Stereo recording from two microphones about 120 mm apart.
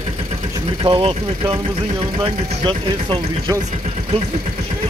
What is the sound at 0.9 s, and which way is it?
Speech, 55° right (ahead or behind).